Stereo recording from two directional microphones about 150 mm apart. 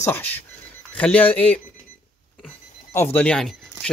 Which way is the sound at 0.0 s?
15° left (ahead or behind).